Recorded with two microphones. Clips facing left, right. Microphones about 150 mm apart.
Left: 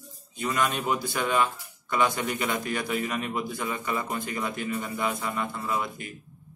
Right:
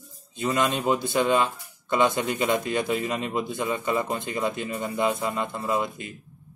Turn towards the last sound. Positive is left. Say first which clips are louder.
# right 4 dB
turn(degrees=-25)  # may be behind; listen again after turning